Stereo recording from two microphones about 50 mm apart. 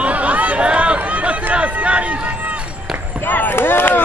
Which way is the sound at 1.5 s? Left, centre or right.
Right.